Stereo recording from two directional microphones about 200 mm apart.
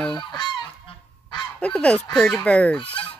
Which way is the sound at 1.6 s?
5° left (ahead or behind).